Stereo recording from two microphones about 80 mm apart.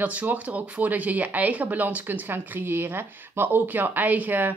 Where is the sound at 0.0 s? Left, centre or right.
Right.